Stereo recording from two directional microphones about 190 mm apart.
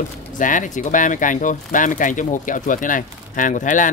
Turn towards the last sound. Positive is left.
turn(degrees=45)  # may be behind; listen again after turning